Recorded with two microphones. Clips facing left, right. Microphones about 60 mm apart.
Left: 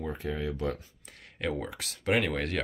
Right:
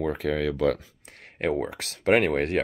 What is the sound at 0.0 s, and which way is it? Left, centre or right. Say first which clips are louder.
Speech: right 8 dB; right.